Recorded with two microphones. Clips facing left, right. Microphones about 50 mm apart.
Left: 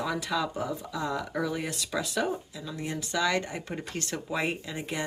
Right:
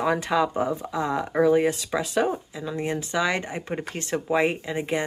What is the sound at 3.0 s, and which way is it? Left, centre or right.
Speech, right.